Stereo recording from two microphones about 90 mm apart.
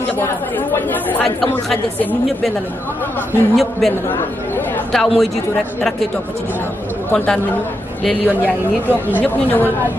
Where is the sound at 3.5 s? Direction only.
Centre (ahead or behind).